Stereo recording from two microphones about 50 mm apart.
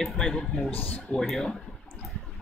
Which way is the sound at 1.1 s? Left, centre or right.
Left.